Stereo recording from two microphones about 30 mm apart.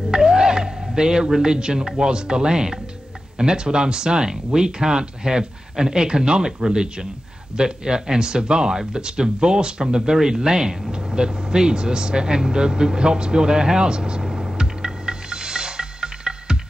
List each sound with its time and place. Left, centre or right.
0.1 s a sound: right
1.3 s speech: right
10.9 s vehicle: right